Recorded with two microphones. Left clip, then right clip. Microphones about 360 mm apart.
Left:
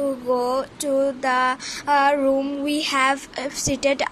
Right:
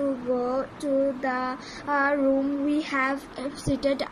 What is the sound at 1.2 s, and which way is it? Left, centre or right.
Speech, left.